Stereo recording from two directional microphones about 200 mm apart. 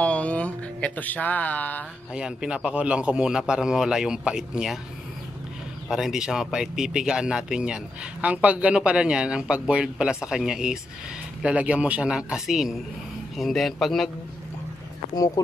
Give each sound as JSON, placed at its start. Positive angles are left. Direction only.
{"t": 0.0, "sound": "a sound", "side_deg": 5}
{"t": 2.1, "sound": "speech", "side_deg": -5}
{"t": 5.9, "sound": "speech", "side_deg": 0}
{"t": 15.1, "sound": "speech", "side_deg": 20}